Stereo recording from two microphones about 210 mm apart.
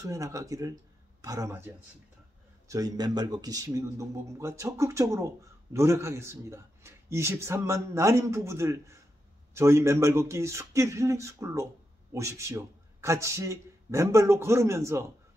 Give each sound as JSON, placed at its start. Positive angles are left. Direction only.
{"t": 0.0, "sound": "speech", "side_deg": -15}
{"t": 2.7, "sound": "speech", "side_deg": -20}